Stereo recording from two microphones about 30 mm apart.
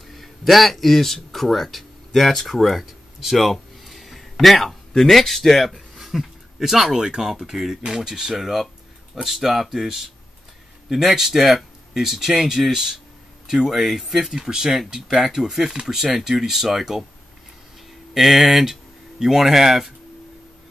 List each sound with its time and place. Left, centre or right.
0.1 s speech: centre
5.9 s a sound: centre
7.2 s speech: centre
14.3 s speech: centre
18.1 s speech: centre